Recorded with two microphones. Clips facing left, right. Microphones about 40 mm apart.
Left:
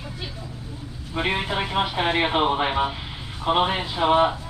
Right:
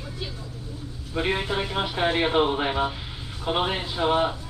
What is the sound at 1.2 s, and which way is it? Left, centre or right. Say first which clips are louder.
A man's voice: left 1 dB; left.